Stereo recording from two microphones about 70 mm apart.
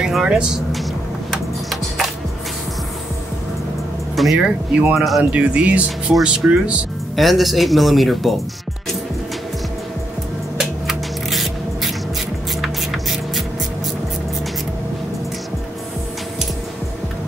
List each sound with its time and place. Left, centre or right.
0.1 s speech: centre
1.3 s music: centre
4.4 s speech: centre
4.9 s speech: centre
5.3 s speech: centre
7.2 s speech: centre
10.6 s music: centre
12.6 s a sound: centre